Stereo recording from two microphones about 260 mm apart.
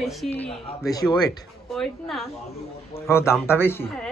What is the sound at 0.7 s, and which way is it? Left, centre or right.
Speech, centre.